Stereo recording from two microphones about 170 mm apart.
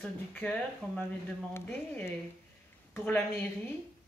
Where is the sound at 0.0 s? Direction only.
10° left (ahead or behind).